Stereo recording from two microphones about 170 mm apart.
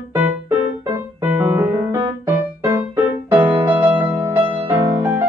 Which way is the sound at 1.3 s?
15° right (ahead or behind).